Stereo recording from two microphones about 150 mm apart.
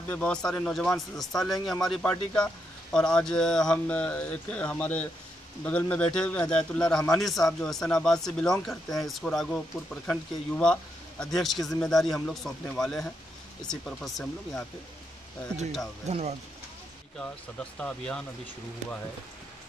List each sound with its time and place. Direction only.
0.1 s speech: 10° left (ahead or behind)
16.1 s speech: 45° right (ahead or behind)
17.7 s speech: 10° left (ahead or behind)